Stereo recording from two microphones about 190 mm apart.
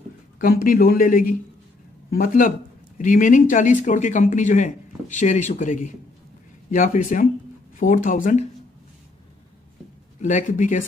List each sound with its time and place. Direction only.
0.4 s speech: 50° left (ahead or behind)
10.2 s speech: 40° left (ahead or behind)